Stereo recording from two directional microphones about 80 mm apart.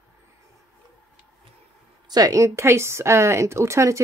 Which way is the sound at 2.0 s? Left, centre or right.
Right.